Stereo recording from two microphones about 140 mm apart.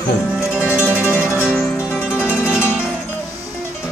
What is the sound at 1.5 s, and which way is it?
Music, 5° left (ahead or behind).